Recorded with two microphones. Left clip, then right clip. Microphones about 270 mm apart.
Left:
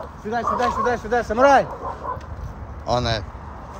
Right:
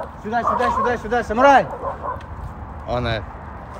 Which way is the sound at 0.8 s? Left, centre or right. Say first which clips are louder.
Even; right.